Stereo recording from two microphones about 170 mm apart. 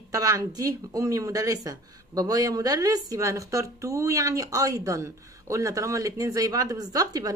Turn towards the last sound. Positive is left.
turn(degrees=-20)  # may be behind; listen again after turning